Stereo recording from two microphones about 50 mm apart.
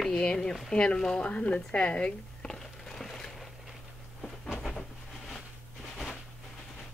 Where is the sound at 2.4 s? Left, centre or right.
Centre.